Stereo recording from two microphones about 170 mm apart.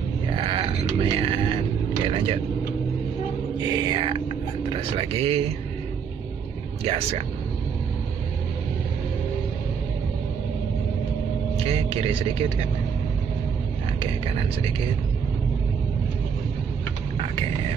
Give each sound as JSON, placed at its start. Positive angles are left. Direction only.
{"t": 0.3, "sound": "grunt", "side_deg": -30}
{"t": 2.0, "sound": "vehicle", "side_deg": -30}
{"t": 3.5, "sound": "music", "side_deg": -30}
{"t": 4.7, "sound": "speech", "side_deg": -35}
{"t": 6.8, "sound": "speech", "side_deg": -35}
{"t": 11.6, "sound": "speech", "side_deg": -35}